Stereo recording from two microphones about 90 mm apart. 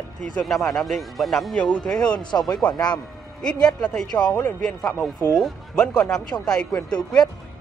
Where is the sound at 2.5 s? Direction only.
50° left (ahead or behind).